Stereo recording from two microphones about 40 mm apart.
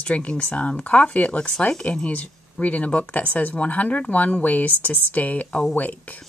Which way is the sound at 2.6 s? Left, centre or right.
Left.